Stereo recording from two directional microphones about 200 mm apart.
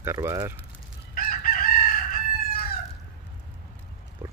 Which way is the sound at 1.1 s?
45° left (ahead or behind).